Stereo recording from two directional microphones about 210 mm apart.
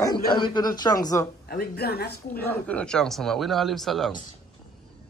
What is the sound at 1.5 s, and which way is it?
Speech, 50° left (ahead or behind).